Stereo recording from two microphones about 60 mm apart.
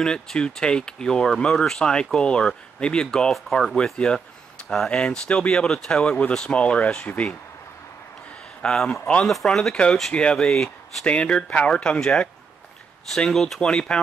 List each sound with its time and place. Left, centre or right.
0.0 s speech: centre
8.6 s speech: centre
11.1 s speech: centre